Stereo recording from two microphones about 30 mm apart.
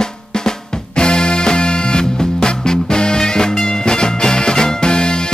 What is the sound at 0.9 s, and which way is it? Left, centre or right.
Music, left.